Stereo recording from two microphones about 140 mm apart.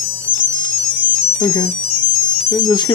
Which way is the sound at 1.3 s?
35° left (ahead or behind).